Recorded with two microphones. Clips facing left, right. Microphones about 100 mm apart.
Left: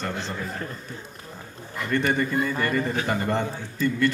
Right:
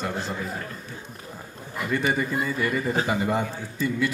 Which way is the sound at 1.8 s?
5° right (ahead or behind).